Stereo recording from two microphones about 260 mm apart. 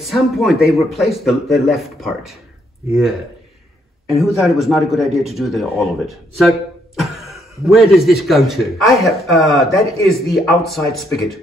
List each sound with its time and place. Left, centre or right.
0.1 s speech: centre
4.1 s speech: centre